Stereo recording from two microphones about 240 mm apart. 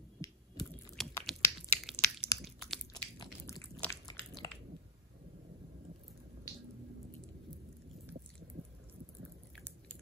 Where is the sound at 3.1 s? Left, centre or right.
Centre.